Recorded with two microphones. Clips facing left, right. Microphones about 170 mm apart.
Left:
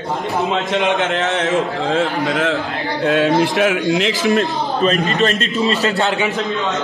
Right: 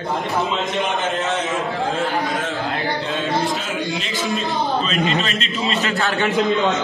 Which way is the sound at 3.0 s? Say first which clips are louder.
Left 12 dB; 70° left (ahead or behind).